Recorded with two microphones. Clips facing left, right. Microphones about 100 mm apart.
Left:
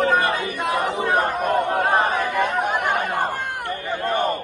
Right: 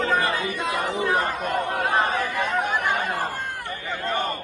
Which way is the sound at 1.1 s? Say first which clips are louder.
Left 5 dB; 55° left (ahead or behind).